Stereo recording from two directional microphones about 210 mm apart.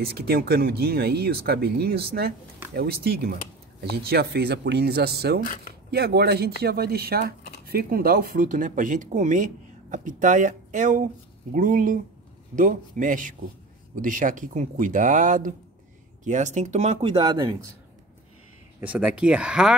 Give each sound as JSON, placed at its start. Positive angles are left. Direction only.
{"t": 0.0, "sound": "speech", "side_deg": -45}
{"t": 5.4, "sound": "speech", "side_deg": 40}
{"t": 5.9, "sound": "speech", "side_deg": -50}
{"t": 18.8, "sound": "speech", "side_deg": -5}